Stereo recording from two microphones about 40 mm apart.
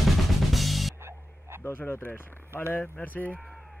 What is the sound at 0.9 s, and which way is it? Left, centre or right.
Music, right.